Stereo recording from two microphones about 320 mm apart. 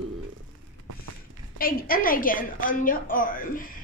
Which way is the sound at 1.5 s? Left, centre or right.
Left.